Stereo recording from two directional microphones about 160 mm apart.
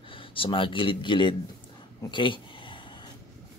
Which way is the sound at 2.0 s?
30° left (ahead or behind).